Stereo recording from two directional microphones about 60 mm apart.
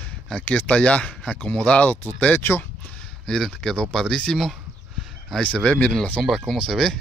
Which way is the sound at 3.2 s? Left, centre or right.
Centre.